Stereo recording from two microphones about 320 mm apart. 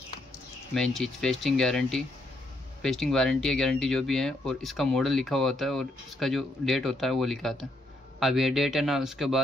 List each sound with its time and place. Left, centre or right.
0.7 s speech: centre